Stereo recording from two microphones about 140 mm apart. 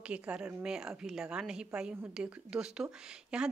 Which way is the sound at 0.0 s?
10° right (ahead or behind).